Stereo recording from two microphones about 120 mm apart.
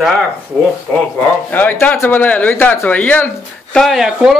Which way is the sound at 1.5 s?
15° left (ahead or behind).